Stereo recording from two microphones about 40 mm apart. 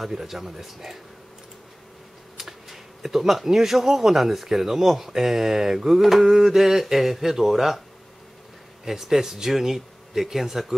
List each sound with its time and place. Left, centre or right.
0.0 s speech: centre
2.3 s speech: centre
8.8 s speech: centre